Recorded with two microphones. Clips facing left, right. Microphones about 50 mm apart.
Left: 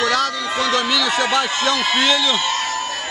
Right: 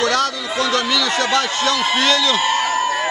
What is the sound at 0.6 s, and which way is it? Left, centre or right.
Speech, centre.